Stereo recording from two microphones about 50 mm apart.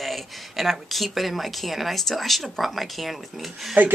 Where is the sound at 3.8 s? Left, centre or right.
Right.